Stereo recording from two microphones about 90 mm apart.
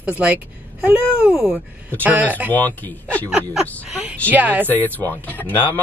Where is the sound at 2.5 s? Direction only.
20° left (ahead or behind).